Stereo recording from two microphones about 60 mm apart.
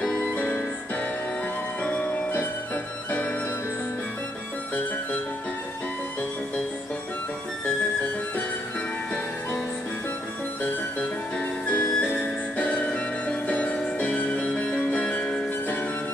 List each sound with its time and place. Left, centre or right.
0.0 s music: centre
0.3 s music: left
1.8 s music: left
2.3 s music: left
11.6 s music: centre